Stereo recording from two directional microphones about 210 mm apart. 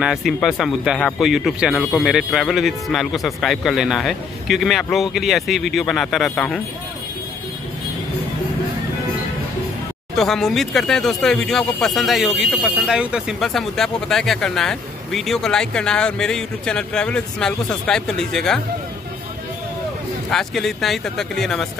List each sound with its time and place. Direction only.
0.0 s speech: centre (ahead or behind)
10.1 s speech: centre (ahead or behind)
20.2 s speech: centre (ahead or behind)